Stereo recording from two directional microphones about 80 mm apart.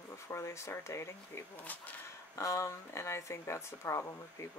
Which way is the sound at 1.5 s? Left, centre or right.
Centre.